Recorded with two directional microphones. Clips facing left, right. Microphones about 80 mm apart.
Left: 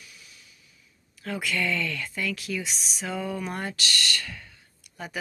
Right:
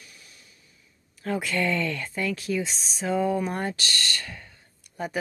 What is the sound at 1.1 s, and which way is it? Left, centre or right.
Speech, right.